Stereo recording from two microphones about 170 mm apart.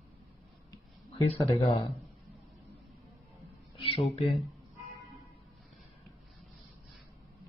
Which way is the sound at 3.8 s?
30° left (ahead or behind).